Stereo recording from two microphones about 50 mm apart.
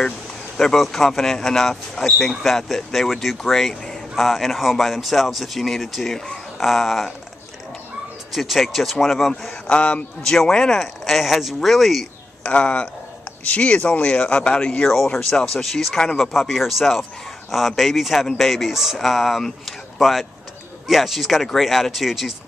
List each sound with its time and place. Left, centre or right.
0.6 s speech: centre
6.1 s speech: centre
6.6 s speech: centre
8.3 s speech: centre
9.7 s speech: left
10.2 s speech: centre
10.8 s speech: centre
12.4 s speech: left
15.1 s speech: centre